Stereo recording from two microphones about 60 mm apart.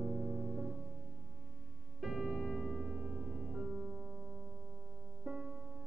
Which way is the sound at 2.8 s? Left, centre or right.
Centre.